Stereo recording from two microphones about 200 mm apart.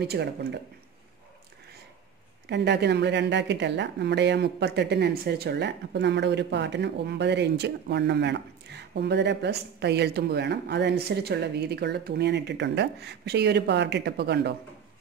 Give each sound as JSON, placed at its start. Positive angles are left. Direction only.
{"t": 0.0, "sound": "a woman's voice", "side_deg": -55}
{"t": 2.5, "sound": "a woman's voice", "side_deg": -60}